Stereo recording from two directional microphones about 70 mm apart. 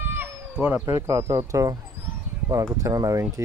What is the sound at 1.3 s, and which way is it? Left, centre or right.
Speech, right.